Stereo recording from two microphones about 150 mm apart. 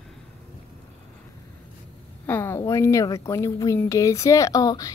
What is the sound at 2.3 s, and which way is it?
A woman's voice, 15° left (ahead or behind).